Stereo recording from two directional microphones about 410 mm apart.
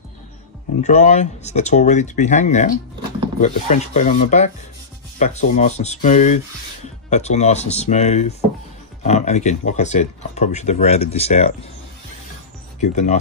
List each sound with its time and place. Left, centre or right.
0.8 s speech: centre
12.9 s speech: centre